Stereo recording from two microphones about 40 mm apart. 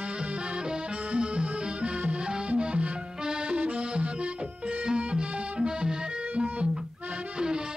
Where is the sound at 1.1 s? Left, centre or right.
Right.